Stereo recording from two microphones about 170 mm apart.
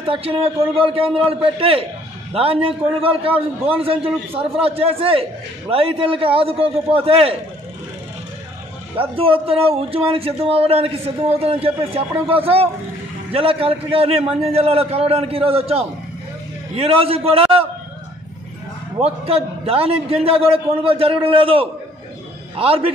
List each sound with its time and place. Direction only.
0.0 s a man's voice: 35° right (ahead or behind)
8.9 s a man's voice: 30° right (ahead or behind)
18.9 s a man's voice: 35° right (ahead or behind)